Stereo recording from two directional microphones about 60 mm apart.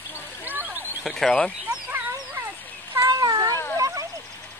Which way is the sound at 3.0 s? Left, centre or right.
Right.